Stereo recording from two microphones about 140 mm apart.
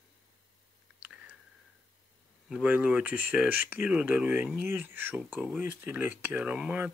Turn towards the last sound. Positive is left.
turn(degrees=-10)  # may be behind; listen again after turning